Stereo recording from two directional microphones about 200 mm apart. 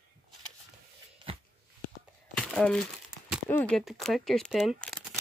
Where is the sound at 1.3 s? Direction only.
25° right (ahead or behind).